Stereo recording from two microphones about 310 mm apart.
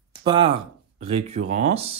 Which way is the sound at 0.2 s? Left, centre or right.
Centre.